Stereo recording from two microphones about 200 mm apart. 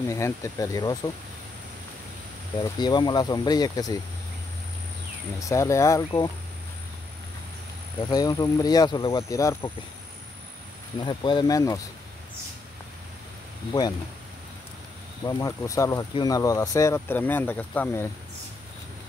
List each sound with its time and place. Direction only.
0.1 s speech: 15° left (ahead or behind)
2.6 s speech: 20° left (ahead or behind)
5.4 s speech: 15° left (ahead or behind)
8.1 s speech: 20° left (ahead or behind)
11.0 s speech: 20° left (ahead or behind)
15.2 s speech: 15° left (ahead or behind)